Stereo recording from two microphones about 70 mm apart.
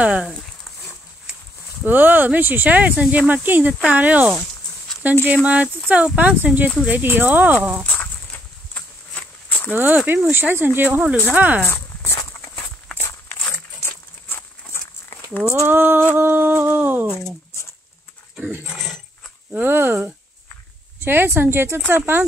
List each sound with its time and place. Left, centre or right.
0.0 s speech: centre
1.9 s speech: right
7.8 s a sound: left
9.7 s speech: right
11.6 s walk: left
13.0 s dog: left
15.6 s speech: right
16.2 s humming: right
19.5 s speech: right